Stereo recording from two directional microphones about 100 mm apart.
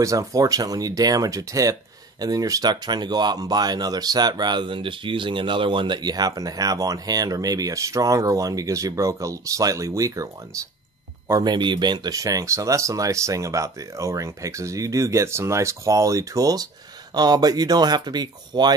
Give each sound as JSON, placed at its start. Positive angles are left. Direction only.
{"t": 0.0, "sound": "speech", "side_deg": -35}
{"t": 11.4, "sound": "speech", "side_deg": -50}